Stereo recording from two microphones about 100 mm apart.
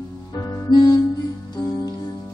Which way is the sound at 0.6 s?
45° left (ahead or behind).